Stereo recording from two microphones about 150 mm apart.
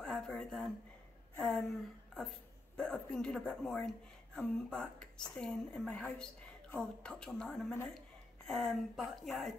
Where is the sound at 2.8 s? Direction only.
5° left (ahead or behind).